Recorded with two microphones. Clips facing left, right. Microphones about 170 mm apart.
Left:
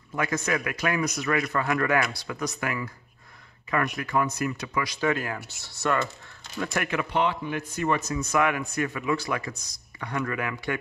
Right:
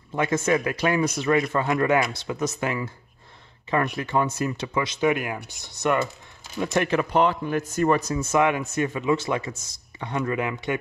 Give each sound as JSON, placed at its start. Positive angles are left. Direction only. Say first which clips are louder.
{"t": 0.1, "sound": "speech", "louder": "right 5 dB", "side_deg": -25}